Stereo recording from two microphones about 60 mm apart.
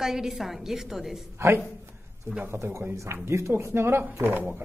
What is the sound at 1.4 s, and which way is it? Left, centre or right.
Speech, right.